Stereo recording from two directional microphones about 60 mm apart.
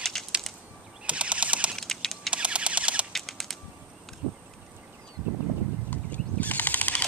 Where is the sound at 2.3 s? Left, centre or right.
Centre.